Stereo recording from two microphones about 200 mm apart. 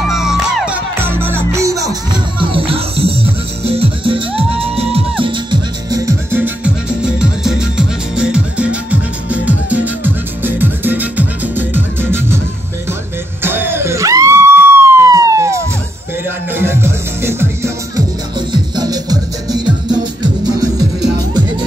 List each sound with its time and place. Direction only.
0.1 s music: centre (ahead or behind)
2.4 s music: 25° right (ahead or behind); by 12.4 s 10° right (ahead or behind)
13.4 s a sound: 10° right (ahead or behind)
16.5 s music: 10° right (ahead or behind)
18.5 s music: 20° right (ahead or behind)